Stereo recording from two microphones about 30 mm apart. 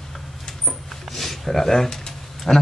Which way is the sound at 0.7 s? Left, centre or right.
Centre.